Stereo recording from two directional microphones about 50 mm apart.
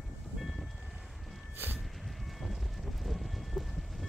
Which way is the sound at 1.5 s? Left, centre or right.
Right.